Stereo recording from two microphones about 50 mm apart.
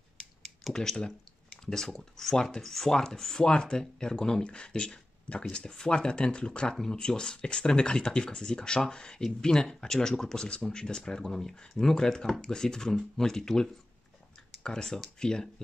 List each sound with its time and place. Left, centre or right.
0.7 s speech: centre